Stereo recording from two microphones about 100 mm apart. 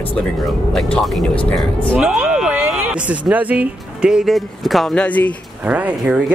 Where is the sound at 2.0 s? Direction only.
10° right (ahead or behind).